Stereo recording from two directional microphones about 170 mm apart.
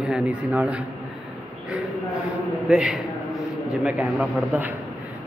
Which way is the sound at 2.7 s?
Centre (ahead or behind).